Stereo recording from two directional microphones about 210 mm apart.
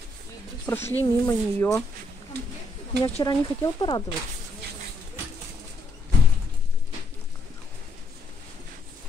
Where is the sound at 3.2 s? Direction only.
20° left (ahead or behind).